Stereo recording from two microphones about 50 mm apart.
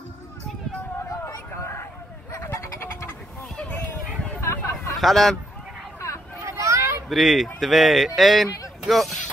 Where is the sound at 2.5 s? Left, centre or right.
Left.